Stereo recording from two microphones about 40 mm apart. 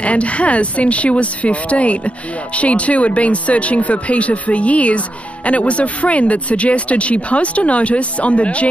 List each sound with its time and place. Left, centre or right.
0.0 s speech: left